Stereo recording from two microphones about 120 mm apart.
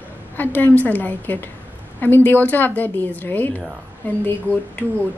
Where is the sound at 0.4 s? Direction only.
15° left (ahead or behind).